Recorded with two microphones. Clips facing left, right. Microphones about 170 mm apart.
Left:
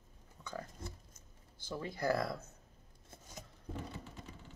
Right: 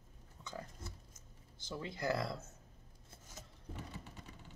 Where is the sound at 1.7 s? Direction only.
20° right (ahead or behind).